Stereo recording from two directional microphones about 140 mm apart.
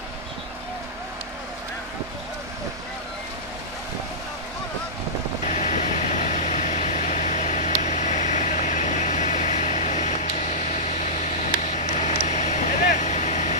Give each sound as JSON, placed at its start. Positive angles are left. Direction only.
{"t": 5.5, "sound": "vehicle", "side_deg": 55}